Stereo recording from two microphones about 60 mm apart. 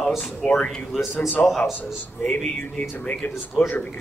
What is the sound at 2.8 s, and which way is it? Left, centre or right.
Speech, left.